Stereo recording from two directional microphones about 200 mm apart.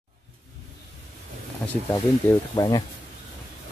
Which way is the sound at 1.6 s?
10° left (ahead or behind).